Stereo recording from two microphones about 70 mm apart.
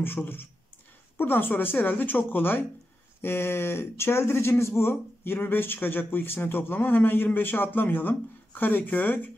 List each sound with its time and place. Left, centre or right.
0.0 s speech: left